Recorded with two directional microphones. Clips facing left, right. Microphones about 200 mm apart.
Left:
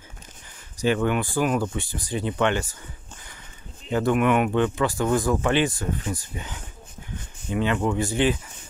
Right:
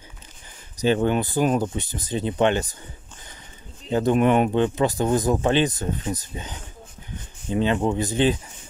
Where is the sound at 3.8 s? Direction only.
25° right (ahead or behind).